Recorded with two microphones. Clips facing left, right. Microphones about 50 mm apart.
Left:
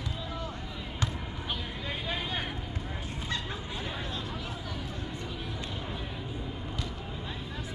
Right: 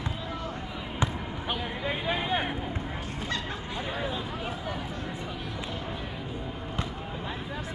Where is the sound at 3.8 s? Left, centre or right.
Centre.